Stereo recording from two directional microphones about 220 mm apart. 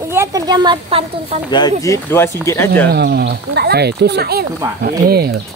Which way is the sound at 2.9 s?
45° right (ahead or behind).